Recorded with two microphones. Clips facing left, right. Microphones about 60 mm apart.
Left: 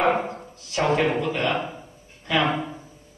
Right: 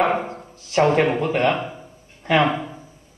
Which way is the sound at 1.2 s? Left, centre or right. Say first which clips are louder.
Right 4 dB; right.